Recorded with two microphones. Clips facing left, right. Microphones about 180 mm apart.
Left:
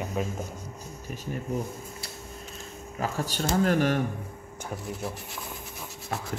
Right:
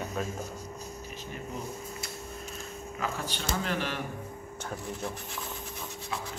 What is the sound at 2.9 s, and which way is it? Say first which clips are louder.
Speech: left 5 dB; 40° left (ahead or behind).